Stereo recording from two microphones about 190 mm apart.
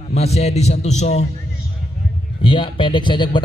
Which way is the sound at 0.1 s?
35° left (ahead or behind).